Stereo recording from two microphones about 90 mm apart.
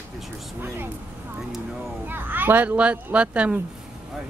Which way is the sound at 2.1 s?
20° right (ahead or behind).